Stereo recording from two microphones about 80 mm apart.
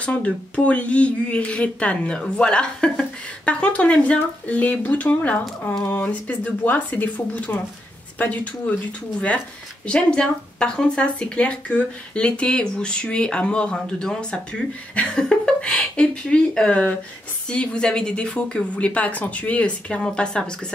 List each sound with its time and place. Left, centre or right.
0.0 s speech: centre
9.8 s speech: centre